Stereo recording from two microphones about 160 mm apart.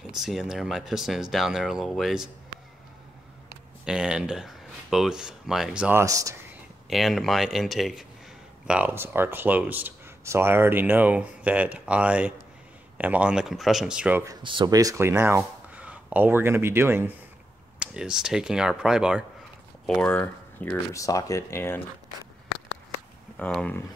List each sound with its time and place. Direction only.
0.1 s speech: 5° right (ahead or behind)
3.8 s speech: 5° right (ahead or behind); by 6.3 s 20° right (ahead or behind)
6.9 s speech: centre (ahead or behind)
14.4 s speech: 30° right (ahead or behind); by 19.2 s 5° right (ahead or behind)
19.9 s speech: 10° left (ahead or behind)
20.9 s speech: 20° left (ahead or behind)
23.3 s speech: 5° left (ahead or behind)